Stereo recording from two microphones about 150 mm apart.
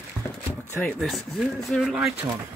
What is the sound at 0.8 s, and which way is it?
Speech, 5° left (ahead or behind).